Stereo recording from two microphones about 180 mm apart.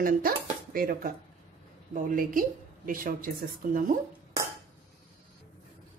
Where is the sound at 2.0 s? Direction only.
50° right (ahead or behind).